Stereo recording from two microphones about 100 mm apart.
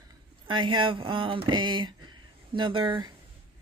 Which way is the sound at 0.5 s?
55° right (ahead or behind).